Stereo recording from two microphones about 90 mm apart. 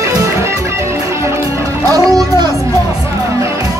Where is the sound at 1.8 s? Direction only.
40° right (ahead or behind).